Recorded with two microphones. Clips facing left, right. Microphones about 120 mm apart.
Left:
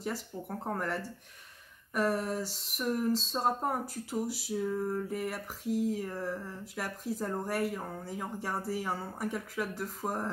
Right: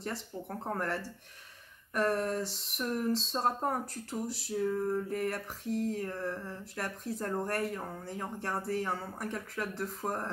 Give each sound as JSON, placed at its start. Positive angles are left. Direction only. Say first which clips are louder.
{"t": 0.0, "sound": "speech", "louder": "left 2 dB", "side_deg": 5}